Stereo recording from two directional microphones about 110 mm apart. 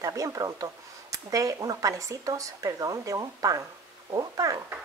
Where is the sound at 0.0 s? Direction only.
30° right (ahead or behind).